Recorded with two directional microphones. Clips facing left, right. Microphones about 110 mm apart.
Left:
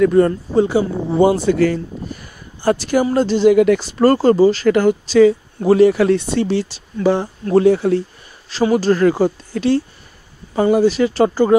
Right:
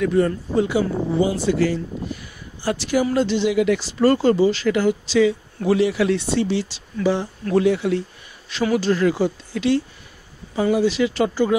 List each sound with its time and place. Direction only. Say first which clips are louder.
0.0 s speech: left 6 dB; 50° left (ahead or behind)
0.6 s speech: left 5 dB; 35° left (ahead or behind)
1.2 s speech: left 8 dB; 55° left (ahead or behind)
2.1 s a sound: even; 45° left (ahead or behind)
2.6 s speech: left 5 dB; 45° left (ahead or behind)